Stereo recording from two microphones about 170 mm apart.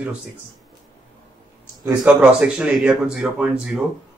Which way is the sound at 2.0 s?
5° right (ahead or behind).